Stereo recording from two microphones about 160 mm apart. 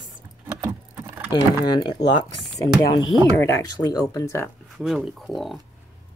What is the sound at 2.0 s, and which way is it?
Speech, 90° left.